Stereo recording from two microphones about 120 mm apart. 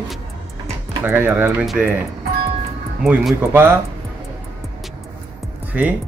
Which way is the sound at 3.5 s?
20° right (ahead or behind).